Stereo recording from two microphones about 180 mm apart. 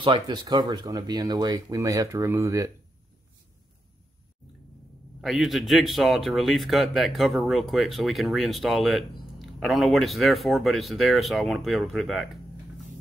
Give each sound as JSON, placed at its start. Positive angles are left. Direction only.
{"t": 0.0, "sound": "speech", "side_deg": -25}
{"t": 5.2, "sound": "speech", "side_deg": 0}